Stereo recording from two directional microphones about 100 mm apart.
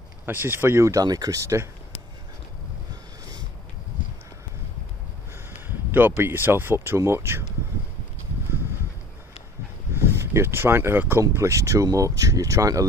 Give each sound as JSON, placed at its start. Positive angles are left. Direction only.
{"t": 0.3, "sound": "speech", "side_deg": -20}
{"t": 5.7, "sound": "speech", "side_deg": -20}
{"t": 9.9, "sound": "speech", "side_deg": -25}